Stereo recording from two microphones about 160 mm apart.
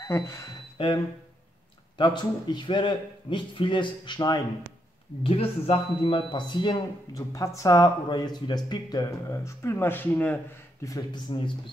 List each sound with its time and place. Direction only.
0.0 s speech: 20° left (ahead or behind)
0.7 s a man's voice: 30° left (ahead or behind)